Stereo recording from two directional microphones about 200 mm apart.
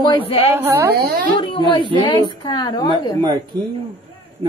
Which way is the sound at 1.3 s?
25° left (ahead or behind).